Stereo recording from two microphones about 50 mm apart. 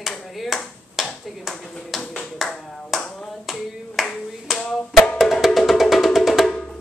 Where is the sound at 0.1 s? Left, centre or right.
Centre.